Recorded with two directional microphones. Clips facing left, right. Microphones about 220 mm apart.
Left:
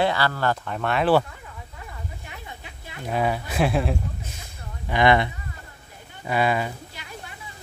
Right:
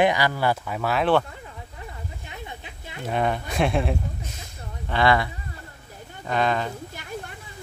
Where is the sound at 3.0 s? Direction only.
5° left (ahead or behind).